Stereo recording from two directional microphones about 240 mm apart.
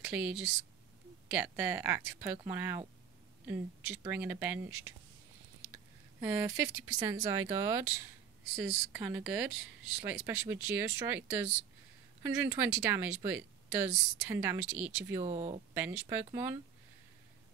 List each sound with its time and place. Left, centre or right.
0.0 s speech: centre
6.2 s speech: centre
15.2 s speech: right
15.7 s speech: centre